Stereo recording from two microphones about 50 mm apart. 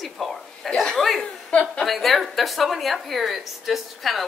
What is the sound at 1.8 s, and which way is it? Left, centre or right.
A woman's voice, centre.